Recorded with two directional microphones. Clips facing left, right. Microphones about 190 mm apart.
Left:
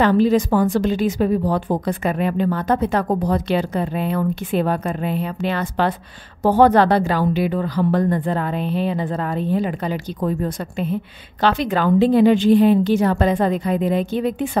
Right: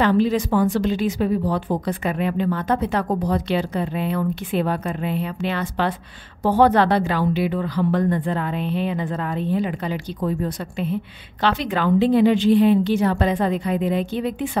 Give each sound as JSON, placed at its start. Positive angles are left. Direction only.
{"t": 0.0, "sound": "a woman's voice", "side_deg": 40}